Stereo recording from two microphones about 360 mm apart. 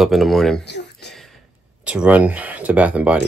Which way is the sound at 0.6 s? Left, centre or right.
Left.